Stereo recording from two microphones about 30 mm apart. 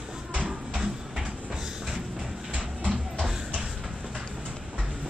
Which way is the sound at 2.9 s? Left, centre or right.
Centre.